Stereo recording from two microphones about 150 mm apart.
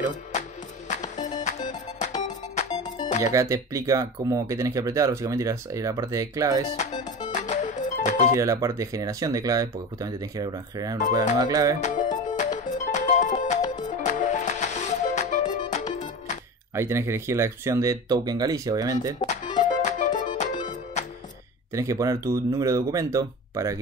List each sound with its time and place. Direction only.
0.8 s music: 55° left (ahead or behind)
2.7 s music: 30° left (ahead or behind)
3.3 s speech: 20° right (ahead or behind)
7.2 s music: 55° left (ahead or behind)
8.4 s speech: 20° right (ahead or behind)
11.8 s speech: 60° left (ahead or behind)
12.4 s music: 55° left (ahead or behind)
16.7 s speech: 20° right (ahead or behind)
19.1 s music: 55° left (ahead or behind)
21.7 s speech: 20° right (ahead or behind)